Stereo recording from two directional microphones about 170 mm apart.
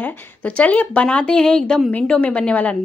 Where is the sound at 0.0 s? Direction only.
10° left (ahead or behind).